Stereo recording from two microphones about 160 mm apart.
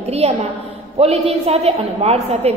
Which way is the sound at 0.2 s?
40° right (ahead or behind).